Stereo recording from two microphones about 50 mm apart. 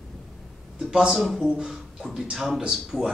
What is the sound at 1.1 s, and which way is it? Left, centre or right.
A man's voice, centre.